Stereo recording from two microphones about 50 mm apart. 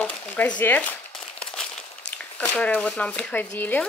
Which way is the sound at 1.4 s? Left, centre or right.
Centre.